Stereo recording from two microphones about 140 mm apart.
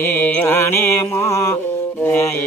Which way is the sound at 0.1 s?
15° left (ahead or behind).